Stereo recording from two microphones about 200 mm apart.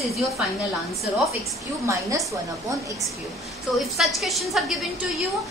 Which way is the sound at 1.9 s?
15° right (ahead or behind).